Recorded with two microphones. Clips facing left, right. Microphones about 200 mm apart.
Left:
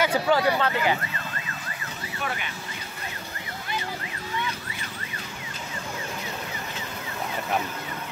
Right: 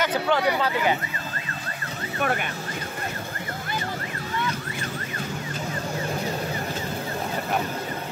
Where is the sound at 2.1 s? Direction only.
55° right (ahead or behind).